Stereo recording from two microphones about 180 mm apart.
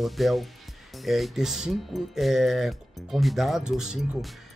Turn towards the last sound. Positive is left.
turn(degrees=-5)  # may be behind; listen again after turning